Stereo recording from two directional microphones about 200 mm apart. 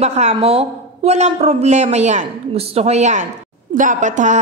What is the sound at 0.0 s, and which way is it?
A woman's voice, 35° right (ahead or behind).